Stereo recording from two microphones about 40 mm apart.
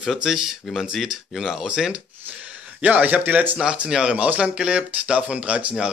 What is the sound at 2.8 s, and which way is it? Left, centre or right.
Speech, right.